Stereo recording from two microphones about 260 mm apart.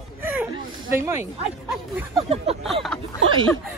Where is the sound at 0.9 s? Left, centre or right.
Centre.